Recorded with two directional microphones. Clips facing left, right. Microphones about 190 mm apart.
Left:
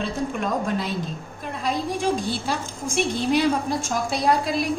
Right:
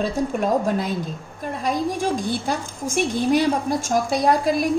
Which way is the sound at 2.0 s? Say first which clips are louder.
Right 1 dB; 50° right (ahead or behind).